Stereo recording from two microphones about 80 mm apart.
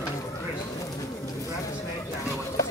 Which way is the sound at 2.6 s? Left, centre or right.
Left.